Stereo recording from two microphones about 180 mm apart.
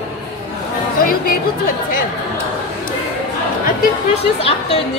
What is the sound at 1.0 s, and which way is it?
Speech, 50° left (ahead or behind).